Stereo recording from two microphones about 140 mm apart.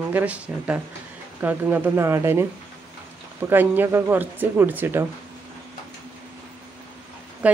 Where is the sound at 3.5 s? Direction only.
15° right (ahead or behind).